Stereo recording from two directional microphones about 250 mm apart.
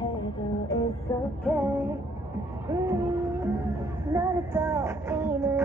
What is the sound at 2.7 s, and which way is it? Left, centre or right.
Speech, centre.